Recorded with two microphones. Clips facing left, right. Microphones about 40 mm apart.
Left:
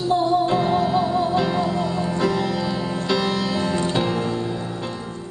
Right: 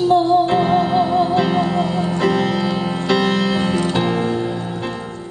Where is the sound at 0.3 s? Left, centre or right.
Right.